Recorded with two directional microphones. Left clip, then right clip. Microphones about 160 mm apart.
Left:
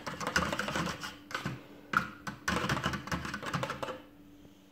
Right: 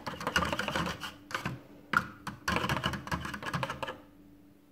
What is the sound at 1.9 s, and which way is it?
Computer keyboard, 15° right (ahead or behind).